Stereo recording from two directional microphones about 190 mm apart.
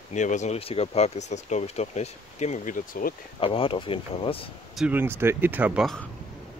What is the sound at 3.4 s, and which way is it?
Speech, 30° left (ahead or behind).